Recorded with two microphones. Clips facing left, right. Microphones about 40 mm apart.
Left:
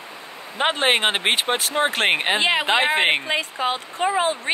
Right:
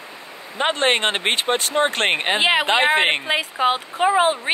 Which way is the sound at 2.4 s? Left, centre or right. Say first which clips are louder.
Right 2 dB; right.